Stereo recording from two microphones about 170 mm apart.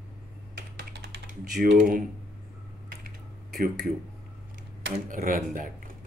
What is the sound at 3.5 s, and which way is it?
Speech, 60° right (ahead or behind).